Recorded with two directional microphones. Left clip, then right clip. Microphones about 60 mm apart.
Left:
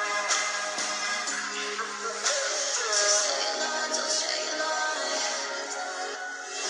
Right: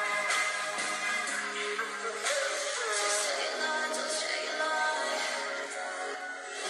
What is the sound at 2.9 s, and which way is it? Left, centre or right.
Music, left.